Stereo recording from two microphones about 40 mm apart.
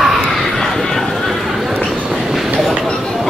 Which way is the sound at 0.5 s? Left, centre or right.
Centre.